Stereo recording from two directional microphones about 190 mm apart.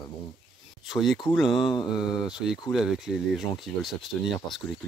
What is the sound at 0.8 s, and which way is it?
Speech, centre (ahead or behind).